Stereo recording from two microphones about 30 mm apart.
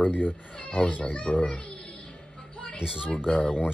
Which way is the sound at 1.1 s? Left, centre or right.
Left.